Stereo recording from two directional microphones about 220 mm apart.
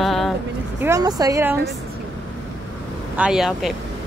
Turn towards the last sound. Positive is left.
turn(degrees=0)  # may be behind; listen again after turning